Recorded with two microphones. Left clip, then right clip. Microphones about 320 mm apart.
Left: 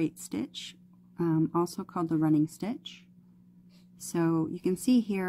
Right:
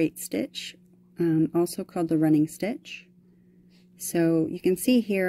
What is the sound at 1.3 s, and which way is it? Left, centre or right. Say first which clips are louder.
Speech: right 4 dB; centre.